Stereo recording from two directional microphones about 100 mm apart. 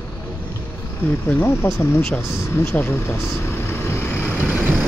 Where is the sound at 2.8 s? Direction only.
25° left (ahead or behind).